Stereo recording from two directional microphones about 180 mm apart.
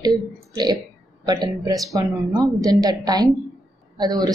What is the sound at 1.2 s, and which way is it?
A woman's voice, 20° right (ahead or behind).